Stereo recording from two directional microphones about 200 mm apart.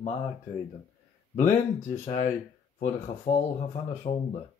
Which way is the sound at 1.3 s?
35° left (ahead or behind).